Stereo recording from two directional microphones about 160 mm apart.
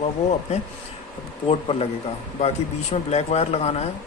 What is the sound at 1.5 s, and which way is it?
Speech, 35° left (ahead or behind).